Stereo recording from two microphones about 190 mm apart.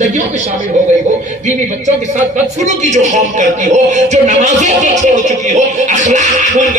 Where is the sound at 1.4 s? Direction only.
40° right (ahead or behind).